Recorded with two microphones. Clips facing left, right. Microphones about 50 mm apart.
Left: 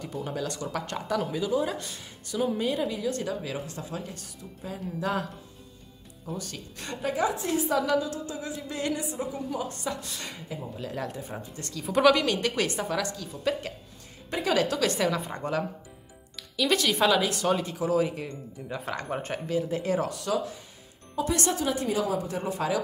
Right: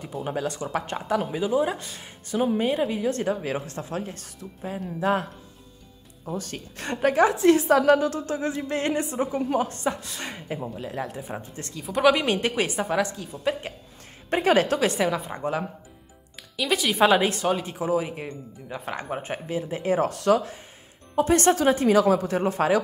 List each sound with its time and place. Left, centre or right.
0.2 s a woman's voice: right
6.3 s a woman's voice: right
7.7 s a woman's voice: right
10.8 s speech: centre
11.8 s speech: centre
12.1 s speech: right
14.3 s a woman's voice: right
14.9 s speech: centre
17.0 s speech: right
20.1 s a woman's voice: right